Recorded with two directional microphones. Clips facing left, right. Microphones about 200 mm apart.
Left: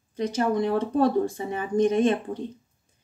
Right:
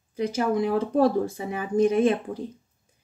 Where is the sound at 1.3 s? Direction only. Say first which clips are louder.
Left 1 dB; 30° left (ahead or behind).